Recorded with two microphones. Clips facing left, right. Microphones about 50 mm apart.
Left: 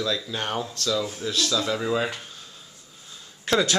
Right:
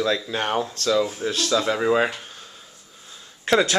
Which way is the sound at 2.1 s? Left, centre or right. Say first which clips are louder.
Right 1 dB; centre.